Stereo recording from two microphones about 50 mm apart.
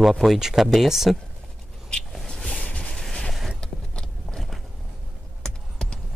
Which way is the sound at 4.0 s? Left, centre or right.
Centre.